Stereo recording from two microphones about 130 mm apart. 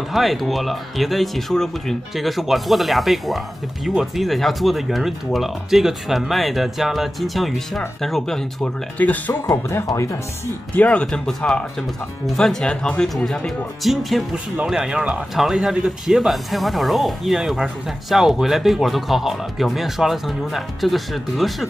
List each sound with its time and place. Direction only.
0.1 s speech: centre (ahead or behind)
9.5 s speech: 25° left (ahead or behind)
10.8 s speech: 10° left (ahead or behind)